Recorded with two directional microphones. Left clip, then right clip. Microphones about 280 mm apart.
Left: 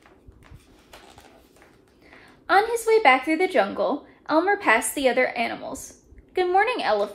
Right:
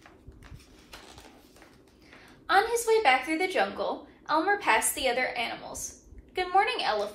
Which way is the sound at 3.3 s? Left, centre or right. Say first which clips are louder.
Left 6 dB; left.